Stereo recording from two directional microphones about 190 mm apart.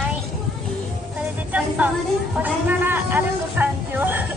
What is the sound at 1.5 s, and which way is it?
Speech, 5° right (ahead or behind).